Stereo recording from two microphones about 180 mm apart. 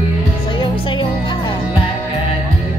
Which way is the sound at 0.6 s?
25° left (ahead or behind).